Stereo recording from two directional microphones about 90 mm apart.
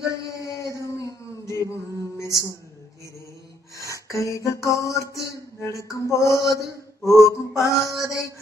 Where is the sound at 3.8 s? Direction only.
35° left (ahead or behind).